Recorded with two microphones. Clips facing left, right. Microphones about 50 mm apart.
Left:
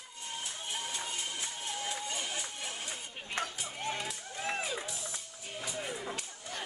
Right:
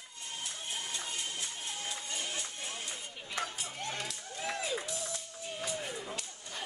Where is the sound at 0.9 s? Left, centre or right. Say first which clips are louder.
Left 1 dB; left.